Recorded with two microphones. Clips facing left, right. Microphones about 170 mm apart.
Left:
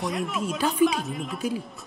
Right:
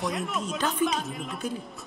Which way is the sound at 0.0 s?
Centre (ahead or behind).